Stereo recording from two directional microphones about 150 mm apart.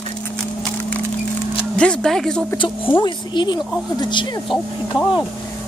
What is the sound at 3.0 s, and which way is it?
A woman's voice, 30° left (ahead or behind).